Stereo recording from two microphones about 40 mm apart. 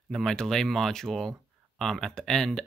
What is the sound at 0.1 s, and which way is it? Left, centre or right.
Speech, centre.